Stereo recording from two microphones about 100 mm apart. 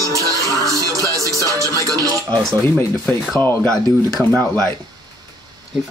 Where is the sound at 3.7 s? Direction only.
30° right (ahead or behind).